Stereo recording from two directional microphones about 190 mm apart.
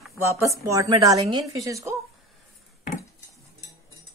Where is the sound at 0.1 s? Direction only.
15° right (ahead or behind).